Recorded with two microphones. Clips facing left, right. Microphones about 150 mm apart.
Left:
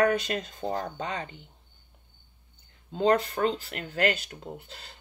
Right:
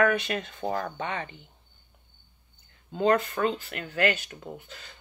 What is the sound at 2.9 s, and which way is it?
Speech, 35° left (ahead or behind).